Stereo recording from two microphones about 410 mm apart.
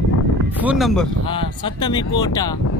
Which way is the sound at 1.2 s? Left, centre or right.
Centre.